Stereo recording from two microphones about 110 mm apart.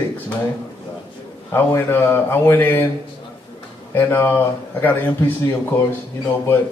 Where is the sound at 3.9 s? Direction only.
20° left (ahead or behind).